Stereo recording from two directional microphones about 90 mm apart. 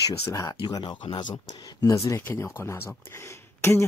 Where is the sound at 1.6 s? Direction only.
45° left (ahead or behind).